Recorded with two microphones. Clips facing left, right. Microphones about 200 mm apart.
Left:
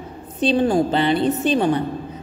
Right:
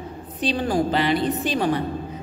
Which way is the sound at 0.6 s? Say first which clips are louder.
Left 3 dB; 25° left (ahead or behind).